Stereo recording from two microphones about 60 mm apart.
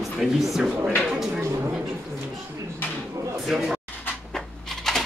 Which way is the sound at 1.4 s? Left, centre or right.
Right.